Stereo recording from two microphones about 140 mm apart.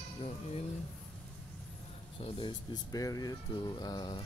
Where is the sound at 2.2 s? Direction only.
35° left (ahead or behind).